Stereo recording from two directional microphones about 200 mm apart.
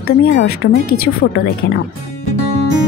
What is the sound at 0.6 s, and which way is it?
Speech, 65° left (ahead or behind).